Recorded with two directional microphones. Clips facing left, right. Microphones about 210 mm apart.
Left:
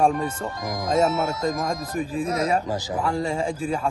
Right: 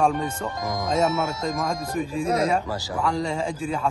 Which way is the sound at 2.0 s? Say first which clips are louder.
Even; 45° left (ahead or behind).